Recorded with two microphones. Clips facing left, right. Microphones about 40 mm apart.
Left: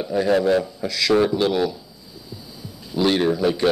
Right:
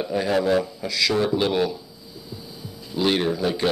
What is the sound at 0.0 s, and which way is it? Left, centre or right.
Speech, centre.